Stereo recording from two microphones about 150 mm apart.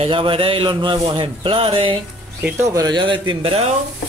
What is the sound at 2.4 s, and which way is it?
Speech, 15° right (ahead or behind).